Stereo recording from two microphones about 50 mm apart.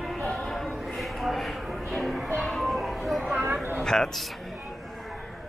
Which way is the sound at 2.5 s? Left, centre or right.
Centre.